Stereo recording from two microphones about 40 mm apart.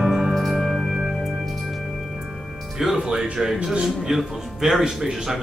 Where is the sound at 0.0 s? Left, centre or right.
Centre.